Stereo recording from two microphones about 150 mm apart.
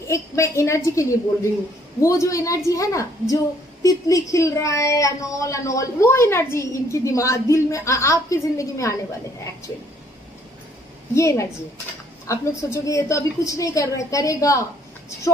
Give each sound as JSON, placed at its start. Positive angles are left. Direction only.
{"t": 0.1, "sound": "speech", "side_deg": 20}
{"t": 11.1, "sound": "speech", "side_deg": 20}